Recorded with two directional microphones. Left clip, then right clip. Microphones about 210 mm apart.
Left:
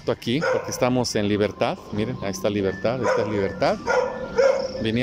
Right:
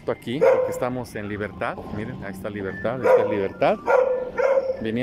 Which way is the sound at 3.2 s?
5° right (ahead or behind).